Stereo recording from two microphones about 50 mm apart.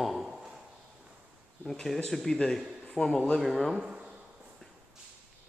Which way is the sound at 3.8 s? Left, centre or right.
Centre.